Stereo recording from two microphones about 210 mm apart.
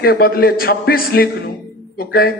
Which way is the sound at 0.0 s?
45° left (ahead or behind).